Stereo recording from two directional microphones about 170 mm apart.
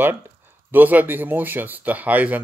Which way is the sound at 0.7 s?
10° right (ahead or behind).